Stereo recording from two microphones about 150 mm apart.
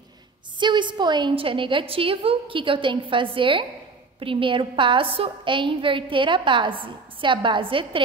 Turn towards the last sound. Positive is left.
turn(degrees=-35)  # may be behind; listen again after turning